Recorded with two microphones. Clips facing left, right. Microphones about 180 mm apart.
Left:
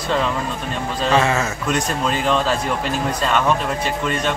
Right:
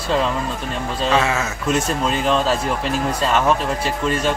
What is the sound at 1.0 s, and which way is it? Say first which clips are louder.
Speech: left 1 dB; centre (ahead or behind).